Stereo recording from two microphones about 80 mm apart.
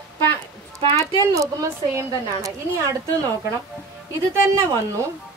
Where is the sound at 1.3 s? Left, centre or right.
Right.